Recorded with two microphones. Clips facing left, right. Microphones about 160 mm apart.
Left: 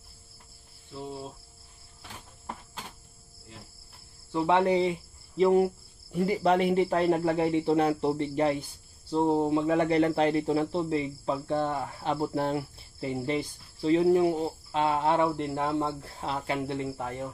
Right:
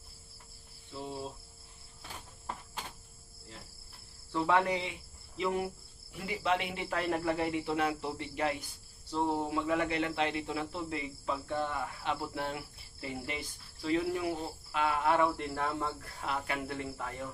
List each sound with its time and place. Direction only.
0.9 s cricket: centre (ahead or behind)
4.3 s cricket: 25° left (ahead or behind)
5.4 s speech: 35° left (ahead or behind)